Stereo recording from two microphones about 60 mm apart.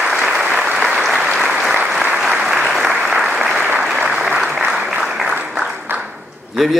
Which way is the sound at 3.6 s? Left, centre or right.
Right.